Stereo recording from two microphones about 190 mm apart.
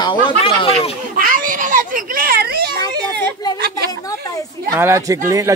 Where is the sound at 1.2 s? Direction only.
45° right (ahead or behind).